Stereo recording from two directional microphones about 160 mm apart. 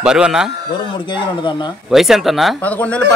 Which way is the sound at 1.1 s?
30° left (ahead or behind).